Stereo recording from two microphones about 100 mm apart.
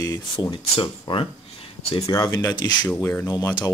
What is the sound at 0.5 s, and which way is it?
Speech, 60° left (ahead or behind).